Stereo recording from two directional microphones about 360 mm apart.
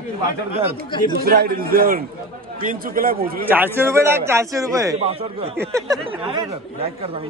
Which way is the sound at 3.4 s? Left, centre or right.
Centre.